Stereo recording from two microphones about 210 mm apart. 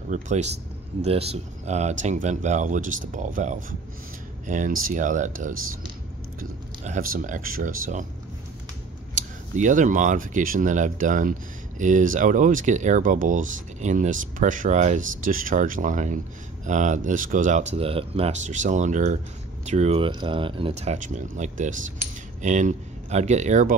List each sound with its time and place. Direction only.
0.1 s speech: 35° right (ahead or behind)
6.8 s speech: 40° right (ahead or behind)
9.1 s speech: 35° right (ahead or behind)